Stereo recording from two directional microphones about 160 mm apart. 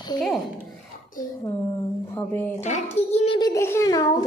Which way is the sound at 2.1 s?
15° left (ahead or behind).